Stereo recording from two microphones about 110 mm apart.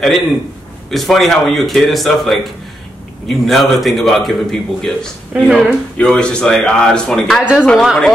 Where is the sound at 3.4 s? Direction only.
Centre (ahead or behind).